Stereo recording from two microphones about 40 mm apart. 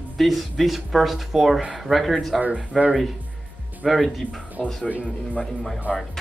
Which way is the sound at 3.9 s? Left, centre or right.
Centre.